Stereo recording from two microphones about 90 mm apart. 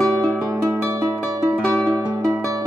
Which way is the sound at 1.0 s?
40° right (ahead or behind).